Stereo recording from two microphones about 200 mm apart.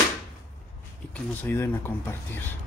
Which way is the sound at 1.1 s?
10° left (ahead or behind).